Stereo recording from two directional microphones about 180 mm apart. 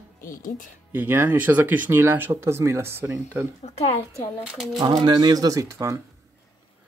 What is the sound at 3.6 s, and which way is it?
Speech, 35° left (ahead or behind).